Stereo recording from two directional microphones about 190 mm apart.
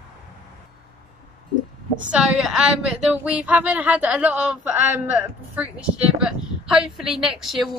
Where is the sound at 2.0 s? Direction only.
5° right (ahead or behind).